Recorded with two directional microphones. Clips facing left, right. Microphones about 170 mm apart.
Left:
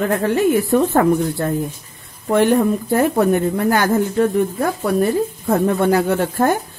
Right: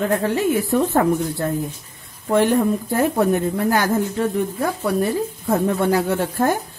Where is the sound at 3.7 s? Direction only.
55° left (ahead or behind).